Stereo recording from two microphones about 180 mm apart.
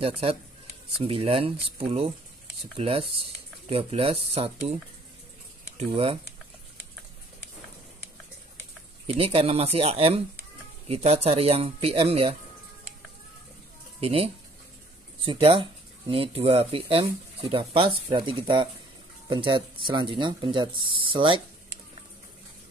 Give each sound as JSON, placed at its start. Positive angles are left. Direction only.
{"t": 0.0, "sound": "speech", "side_deg": -30}
{"t": 9.0, "sound": "speech", "side_deg": -30}
{"t": 13.9, "sound": "speech", "side_deg": -35}